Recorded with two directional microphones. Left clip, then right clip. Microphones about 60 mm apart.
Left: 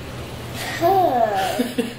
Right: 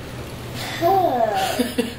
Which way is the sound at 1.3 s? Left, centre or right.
Centre.